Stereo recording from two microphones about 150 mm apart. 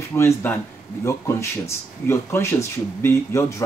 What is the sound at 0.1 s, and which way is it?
Speech, 15° left (ahead or behind).